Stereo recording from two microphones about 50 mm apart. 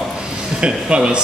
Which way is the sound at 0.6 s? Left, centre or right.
Right.